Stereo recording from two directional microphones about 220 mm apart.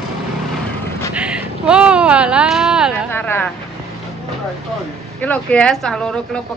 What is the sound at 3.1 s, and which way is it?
Speech, 10° left (ahead or behind).